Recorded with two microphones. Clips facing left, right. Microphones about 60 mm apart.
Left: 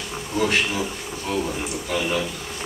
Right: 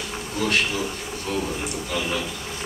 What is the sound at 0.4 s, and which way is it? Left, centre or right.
Speech, left.